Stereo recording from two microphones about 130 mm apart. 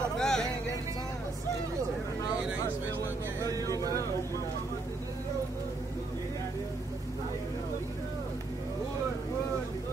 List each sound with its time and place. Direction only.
0.2 s music: 5° left (ahead or behind)
3.4 s vehicle: 30° right (ahead or behind)